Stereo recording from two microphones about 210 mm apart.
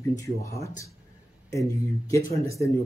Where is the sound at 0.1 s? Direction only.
15° left (ahead or behind).